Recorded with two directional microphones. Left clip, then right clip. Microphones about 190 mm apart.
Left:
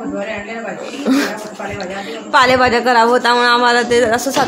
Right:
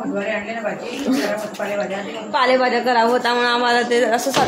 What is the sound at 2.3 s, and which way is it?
Speech, 35° left (ahead or behind).